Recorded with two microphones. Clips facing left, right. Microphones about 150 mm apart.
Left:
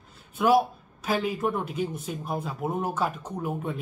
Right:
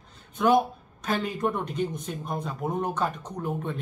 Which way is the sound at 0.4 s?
5° left (ahead or behind).